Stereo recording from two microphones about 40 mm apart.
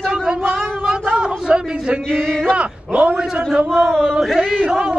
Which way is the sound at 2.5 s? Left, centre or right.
Right.